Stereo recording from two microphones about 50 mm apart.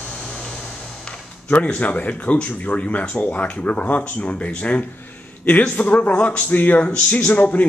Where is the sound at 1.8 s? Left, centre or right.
Left.